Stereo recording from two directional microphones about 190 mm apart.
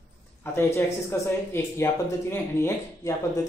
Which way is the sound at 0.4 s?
15° left (ahead or behind).